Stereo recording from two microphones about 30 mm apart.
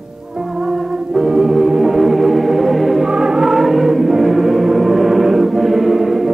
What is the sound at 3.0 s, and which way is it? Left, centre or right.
Music, right.